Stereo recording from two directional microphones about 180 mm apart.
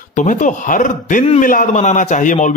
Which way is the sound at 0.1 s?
45° left (ahead or behind).